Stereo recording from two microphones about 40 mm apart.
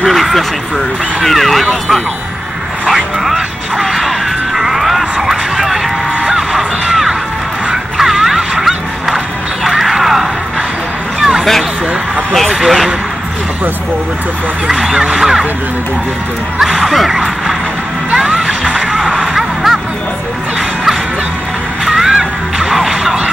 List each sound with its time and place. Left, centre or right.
0.0 s vehicle: centre
1.2 s speech: centre
2.9 s a sound: centre
4.6 s a sound: centre
6.9 s music: centre
9.7 s a sound: centre
11.1 s music: centre
12.6 s speech: centre
14.9 s speech: centre
16.8 s speech: centre
18.1 s music: right
19.3 s music: centre
21.8 s music: centre